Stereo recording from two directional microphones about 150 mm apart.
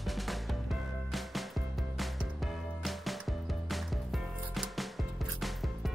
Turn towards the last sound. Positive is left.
turn(degrees=0)  # may be behind; listen again after turning